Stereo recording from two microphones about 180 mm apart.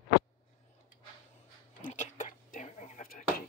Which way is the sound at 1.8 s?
40° left (ahead or behind).